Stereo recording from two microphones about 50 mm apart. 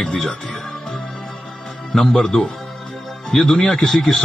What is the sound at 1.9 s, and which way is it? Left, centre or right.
Speech, centre.